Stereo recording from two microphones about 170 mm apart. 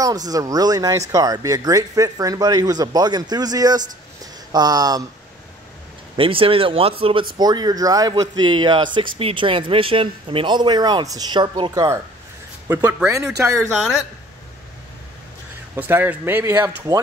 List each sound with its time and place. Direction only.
0.3 s speech: 20° right (ahead or behind)
6.1 s speech: 30° right (ahead or behind); by 13.2 s 15° right (ahead or behind)
13.6 s speech: centre (ahead or behind)
15.7 s speech: 10° right (ahead or behind)